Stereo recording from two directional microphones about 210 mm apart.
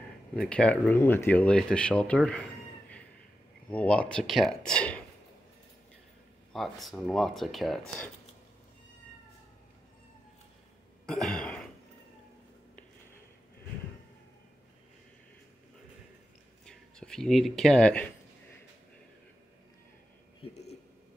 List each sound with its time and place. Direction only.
0.4 s speech: 5° left (ahead or behind)
6.5 s speech: centre (ahead or behind)
11.1 s throat clearing: 5° left (ahead or behind)
16.6 s speech: 5° left (ahead or behind)